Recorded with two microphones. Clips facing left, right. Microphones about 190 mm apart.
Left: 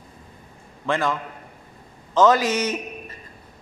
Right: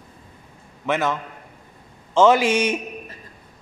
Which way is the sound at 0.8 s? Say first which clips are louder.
Right 1 dB; 20° right (ahead or behind).